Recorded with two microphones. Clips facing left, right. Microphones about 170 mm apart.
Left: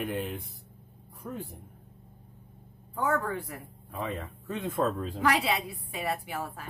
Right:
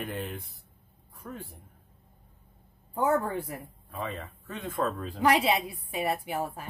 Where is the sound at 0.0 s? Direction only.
15° left (ahead or behind).